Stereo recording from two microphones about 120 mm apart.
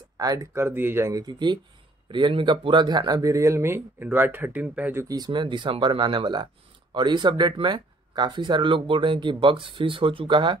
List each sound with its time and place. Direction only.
0.2 s speech: 30° right (ahead or behind); by 5.0 s 15° right (ahead or behind)
5.0 s speech: 35° right (ahead or behind)